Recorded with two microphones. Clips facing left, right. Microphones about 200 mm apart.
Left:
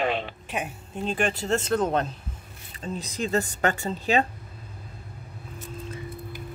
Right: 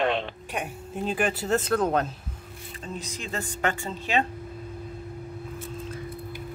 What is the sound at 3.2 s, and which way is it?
Speech, 40° left (ahead or behind).